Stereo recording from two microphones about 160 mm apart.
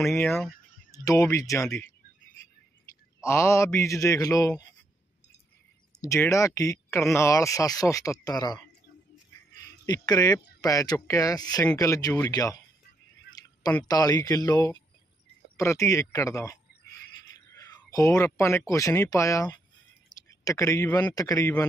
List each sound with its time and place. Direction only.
0.1 s speech: 5° left (ahead or behind)
0.9 s speech: 20° left (ahead or behind)
3.2 s speech: 15° left (ahead or behind)
5.9 s speech: 20° left (ahead or behind)
9.6 s a sound: 25° left (ahead or behind)
10.6 s speech: 20° left (ahead or behind)
13.4 s a sound: 25° left (ahead or behind)
13.8 s a man's voice: 25° left (ahead or behind)